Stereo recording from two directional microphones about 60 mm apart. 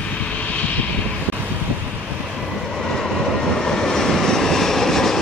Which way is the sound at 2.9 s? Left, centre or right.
Centre.